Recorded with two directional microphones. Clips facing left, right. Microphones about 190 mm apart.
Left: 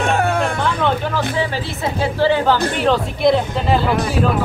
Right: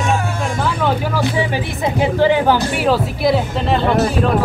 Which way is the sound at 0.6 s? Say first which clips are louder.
Even; 5° right (ahead or behind).